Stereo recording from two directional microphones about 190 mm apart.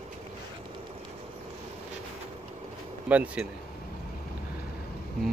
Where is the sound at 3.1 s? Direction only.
5° right (ahead or behind).